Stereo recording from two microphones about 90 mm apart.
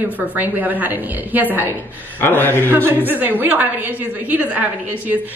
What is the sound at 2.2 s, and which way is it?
Speech, 25° left (ahead or behind).